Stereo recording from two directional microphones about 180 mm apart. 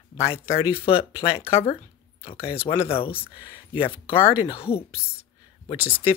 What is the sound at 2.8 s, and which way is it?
Speech, 30° left (ahead or behind).